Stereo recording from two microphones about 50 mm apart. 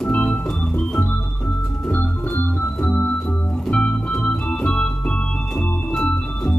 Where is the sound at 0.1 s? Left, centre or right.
Left.